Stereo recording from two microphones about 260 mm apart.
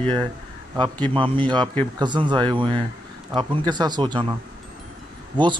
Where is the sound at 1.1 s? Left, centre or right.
Centre.